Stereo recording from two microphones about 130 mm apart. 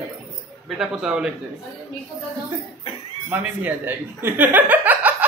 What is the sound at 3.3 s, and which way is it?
Speech, 15° right (ahead or behind).